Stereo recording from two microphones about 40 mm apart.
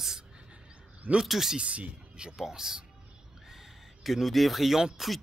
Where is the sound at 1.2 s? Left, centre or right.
Centre.